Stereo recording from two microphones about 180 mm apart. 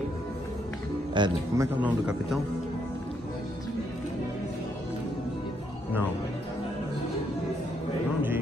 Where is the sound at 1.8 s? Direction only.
5° right (ahead or behind).